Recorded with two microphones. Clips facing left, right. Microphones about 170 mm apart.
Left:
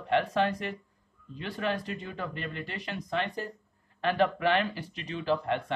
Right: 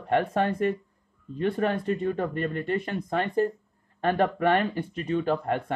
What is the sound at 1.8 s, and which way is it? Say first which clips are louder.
Speech: right 10 dB; 50° right (ahead or behind).